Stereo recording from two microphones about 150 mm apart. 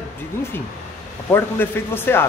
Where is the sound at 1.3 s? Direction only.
15° left (ahead or behind).